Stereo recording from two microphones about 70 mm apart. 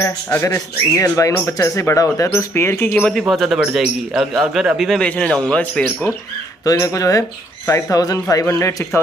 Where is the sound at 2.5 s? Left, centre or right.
Left.